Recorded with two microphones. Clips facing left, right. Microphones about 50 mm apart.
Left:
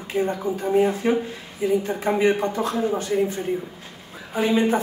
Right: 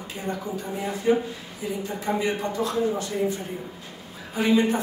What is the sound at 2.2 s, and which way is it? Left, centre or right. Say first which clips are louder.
Speech: left 5 dB; left.